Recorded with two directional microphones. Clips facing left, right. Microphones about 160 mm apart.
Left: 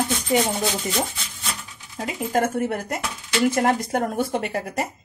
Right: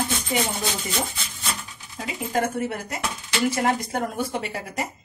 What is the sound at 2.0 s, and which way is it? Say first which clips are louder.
A woman's voice: left 3 dB; 45° left (ahead or behind).